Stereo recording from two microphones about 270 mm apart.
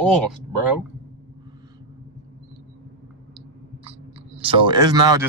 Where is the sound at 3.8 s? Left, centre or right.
Right.